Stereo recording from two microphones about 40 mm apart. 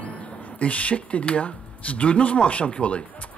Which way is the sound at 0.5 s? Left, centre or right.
Left.